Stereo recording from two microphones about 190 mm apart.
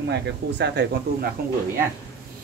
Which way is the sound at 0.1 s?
65° right (ahead or behind).